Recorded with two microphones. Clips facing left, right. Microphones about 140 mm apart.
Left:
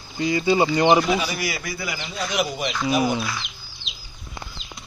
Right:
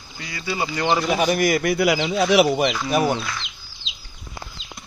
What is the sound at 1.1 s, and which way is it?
Speech, 55° right (ahead or behind).